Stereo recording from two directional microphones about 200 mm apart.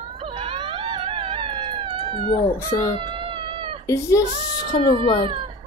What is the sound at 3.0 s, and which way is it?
Cat, 25° right (ahead or behind).